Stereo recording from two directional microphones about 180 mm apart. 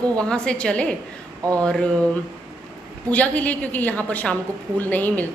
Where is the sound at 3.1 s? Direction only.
10° left (ahead or behind).